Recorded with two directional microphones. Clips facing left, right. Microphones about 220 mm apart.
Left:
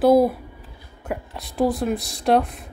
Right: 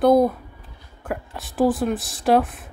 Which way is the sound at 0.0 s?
5° left (ahead or behind).